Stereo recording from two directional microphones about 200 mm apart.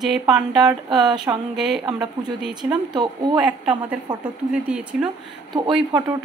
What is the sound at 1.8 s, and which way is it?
Speech, 20° right (ahead or behind).